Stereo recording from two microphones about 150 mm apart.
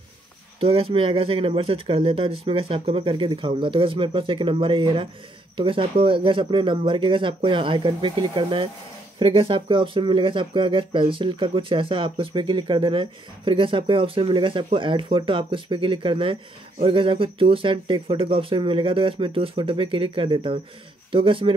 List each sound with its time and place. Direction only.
0.6 s speech: 40° right (ahead or behind)